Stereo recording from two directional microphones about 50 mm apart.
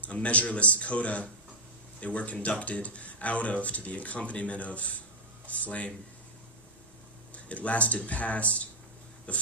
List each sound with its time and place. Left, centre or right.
0.0 s speech: left
7.3 s speech: left